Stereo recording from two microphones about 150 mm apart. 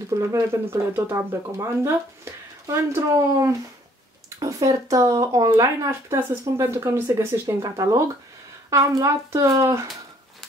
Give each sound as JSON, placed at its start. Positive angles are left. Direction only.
{"t": 0.1, "sound": "speech", "side_deg": -15}